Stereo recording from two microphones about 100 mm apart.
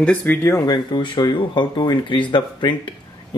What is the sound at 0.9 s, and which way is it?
Speech, 50° left (ahead or behind).